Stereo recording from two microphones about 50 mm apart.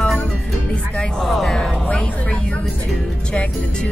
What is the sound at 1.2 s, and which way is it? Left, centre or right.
Music, centre.